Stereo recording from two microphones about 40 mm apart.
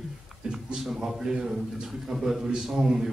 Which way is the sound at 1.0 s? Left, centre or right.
Centre.